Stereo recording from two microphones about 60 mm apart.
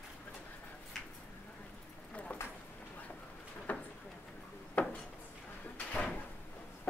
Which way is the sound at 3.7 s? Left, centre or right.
Left.